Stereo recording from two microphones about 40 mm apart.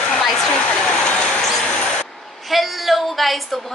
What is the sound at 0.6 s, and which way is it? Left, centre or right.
Vehicle, left.